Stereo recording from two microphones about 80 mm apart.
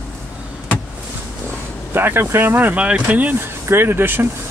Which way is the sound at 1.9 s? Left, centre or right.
Right.